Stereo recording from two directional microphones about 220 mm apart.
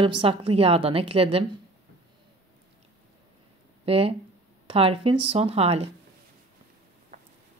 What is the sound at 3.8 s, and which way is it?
A woman's voice, 25° right (ahead or behind).